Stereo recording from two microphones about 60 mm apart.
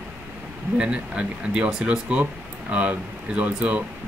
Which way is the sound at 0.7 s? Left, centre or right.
Centre.